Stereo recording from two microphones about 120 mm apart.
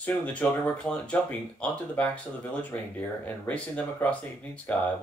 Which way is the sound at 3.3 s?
10° left (ahead or behind).